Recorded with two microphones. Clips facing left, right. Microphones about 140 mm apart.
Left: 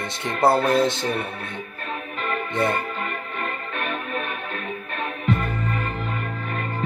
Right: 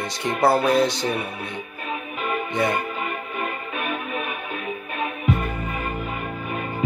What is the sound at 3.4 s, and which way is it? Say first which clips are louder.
Music: even; 10° right (ahead or behind).